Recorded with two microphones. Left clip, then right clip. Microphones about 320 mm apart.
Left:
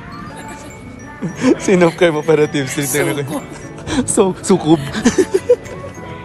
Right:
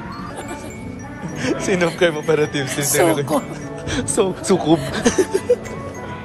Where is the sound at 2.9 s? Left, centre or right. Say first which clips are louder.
Right 3 dB; right.